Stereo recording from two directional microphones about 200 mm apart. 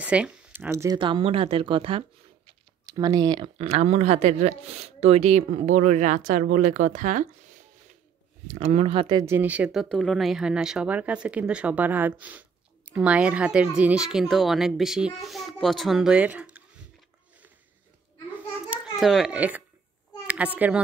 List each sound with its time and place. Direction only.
0.0 s speech: 5° right (ahead or behind); by 7.2 s 40° right (ahead or behind)
8.5 s speech: 35° right (ahead or behind)
9.2 s speech: 10° right (ahead or behind)
18.7 s a child's voice: centre (ahead or behind)